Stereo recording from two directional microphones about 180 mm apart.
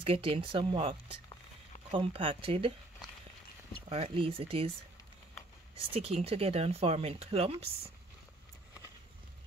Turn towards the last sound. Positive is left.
turn(degrees=-35)  # may be behind; listen again after turning